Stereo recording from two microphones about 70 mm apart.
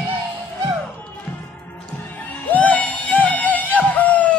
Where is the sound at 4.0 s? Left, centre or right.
Left.